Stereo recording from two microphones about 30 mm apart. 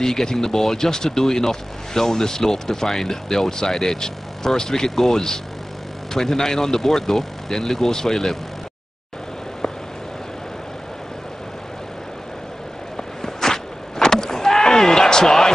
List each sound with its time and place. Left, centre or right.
0.0 s speech: centre
12.9 s power windows: centre